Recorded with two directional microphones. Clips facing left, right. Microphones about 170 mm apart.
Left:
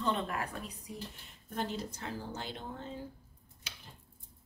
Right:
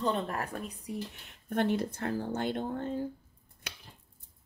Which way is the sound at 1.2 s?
65° right (ahead or behind).